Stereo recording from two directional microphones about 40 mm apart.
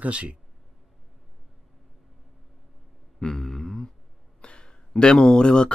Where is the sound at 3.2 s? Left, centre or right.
Centre.